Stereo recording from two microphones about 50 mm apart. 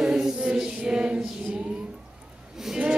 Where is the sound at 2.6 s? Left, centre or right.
Centre.